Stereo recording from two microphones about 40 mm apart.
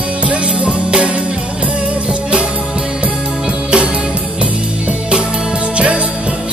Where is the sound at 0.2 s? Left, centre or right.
Right.